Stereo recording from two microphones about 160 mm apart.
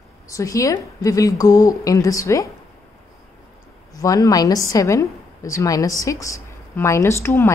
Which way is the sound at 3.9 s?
20° left (ahead or behind).